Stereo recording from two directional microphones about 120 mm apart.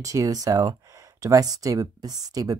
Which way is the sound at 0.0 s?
30° right (ahead or behind).